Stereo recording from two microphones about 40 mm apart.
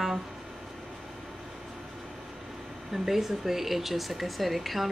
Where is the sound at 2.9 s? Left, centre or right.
Centre.